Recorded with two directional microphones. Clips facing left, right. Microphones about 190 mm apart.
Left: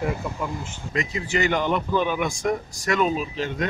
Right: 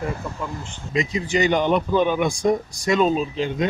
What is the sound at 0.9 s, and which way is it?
Speech, 15° right (ahead or behind).